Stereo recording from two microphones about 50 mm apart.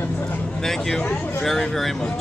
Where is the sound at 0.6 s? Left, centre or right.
Centre.